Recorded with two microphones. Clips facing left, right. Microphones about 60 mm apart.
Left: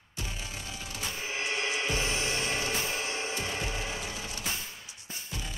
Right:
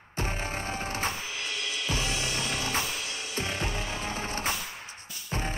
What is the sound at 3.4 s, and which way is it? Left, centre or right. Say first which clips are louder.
Music: right 2 dB; right.